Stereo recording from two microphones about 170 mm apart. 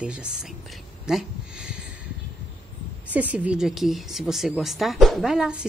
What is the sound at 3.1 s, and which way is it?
Speech, 10° right (ahead or behind).